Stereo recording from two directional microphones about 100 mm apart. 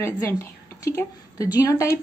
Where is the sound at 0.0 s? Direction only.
30° left (ahead or behind).